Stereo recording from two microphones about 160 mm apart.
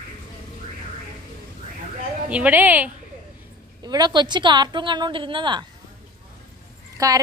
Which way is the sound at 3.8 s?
25° right (ahead or behind).